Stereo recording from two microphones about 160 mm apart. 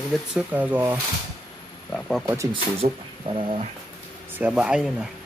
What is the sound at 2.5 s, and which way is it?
Speech, 30° right (ahead or behind).